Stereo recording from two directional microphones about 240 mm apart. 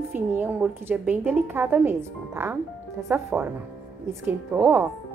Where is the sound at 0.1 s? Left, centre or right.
Centre.